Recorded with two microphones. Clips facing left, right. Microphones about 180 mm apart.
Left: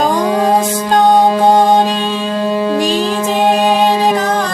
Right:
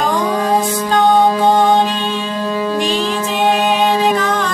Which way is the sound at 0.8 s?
35° left (ahead or behind).